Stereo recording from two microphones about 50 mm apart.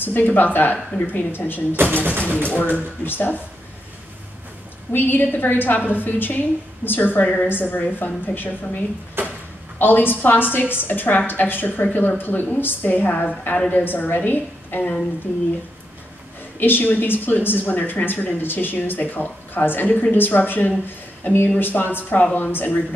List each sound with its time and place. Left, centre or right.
0.0 s speech: left
1.8 s speech: right
2.7 s speech: left
4.9 s speech: left
7.8 s a woman's voice: left
9.2 s drawer open or close: right
9.8 s speech: left
16.5 s speech: left